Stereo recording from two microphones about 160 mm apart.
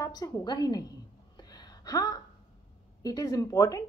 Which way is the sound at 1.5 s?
25° left (ahead or behind).